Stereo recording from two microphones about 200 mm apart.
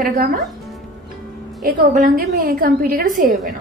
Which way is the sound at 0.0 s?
45° right (ahead or behind).